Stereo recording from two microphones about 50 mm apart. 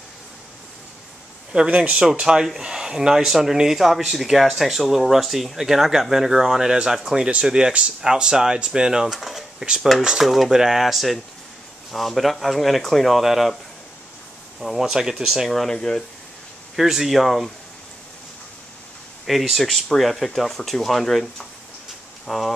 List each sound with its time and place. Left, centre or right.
1.5 s speech: centre
14.6 s speech: centre
15.7 s speech: centre
16.7 s speech: centre
19.2 s speech: centre